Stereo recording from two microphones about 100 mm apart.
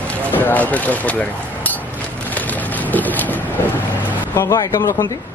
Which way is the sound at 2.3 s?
15° left (ahead or behind).